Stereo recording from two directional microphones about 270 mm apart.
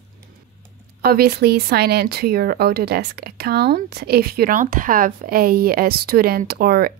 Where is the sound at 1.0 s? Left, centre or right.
Right.